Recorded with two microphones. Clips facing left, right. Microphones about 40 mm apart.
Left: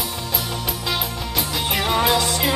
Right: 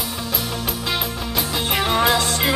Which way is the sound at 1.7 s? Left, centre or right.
Centre.